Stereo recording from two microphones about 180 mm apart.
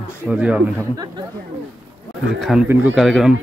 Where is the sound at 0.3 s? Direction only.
5° right (ahead or behind).